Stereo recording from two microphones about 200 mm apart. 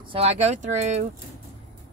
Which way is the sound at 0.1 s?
30° right (ahead or behind).